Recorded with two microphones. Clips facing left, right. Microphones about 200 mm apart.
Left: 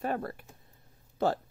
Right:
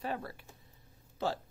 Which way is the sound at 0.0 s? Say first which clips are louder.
Left 5 dB; 50° left (ahead or behind).